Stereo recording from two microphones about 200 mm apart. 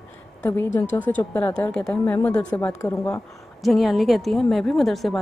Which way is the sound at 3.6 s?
Centre (ahead or behind).